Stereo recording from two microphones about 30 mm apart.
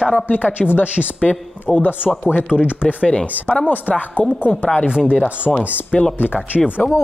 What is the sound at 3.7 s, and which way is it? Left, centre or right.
Speech, left.